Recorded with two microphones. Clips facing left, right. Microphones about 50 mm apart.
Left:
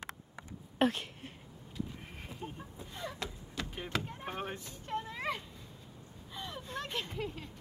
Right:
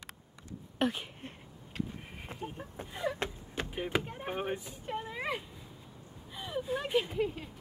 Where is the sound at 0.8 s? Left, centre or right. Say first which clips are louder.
Left 2 dB; centre.